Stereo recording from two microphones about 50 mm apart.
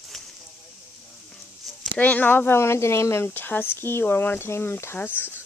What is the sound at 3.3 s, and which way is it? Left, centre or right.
Speech, left.